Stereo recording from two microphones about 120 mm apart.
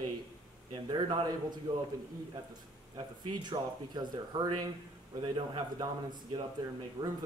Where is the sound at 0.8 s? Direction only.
40° right (ahead or behind).